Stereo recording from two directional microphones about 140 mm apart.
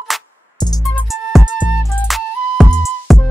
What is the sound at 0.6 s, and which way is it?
Music, 30° left (ahead or behind).